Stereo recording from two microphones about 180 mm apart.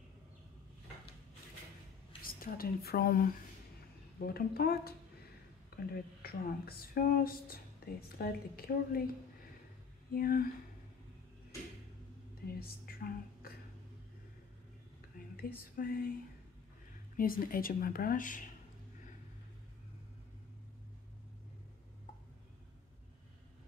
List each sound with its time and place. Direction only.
2.2 s speech: 55° left (ahead or behind)
5.7 s a sound: 60° left (ahead or behind)
6.2 s speech: 55° left (ahead or behind)
10.1 s speech: 55° left (ahead or behind)
12.5 s speech: 55° left (ahead or behind)
15.3 s a sound: 55° left (ahead or behind)
17.2 s speech: 50° left (ahead or behind)